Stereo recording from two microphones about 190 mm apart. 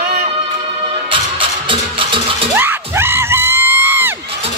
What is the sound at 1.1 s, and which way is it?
Music, 25° right (ahead or behind).